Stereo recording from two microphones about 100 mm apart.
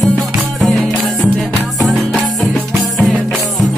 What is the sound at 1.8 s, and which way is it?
Music, centre (ahead or behind).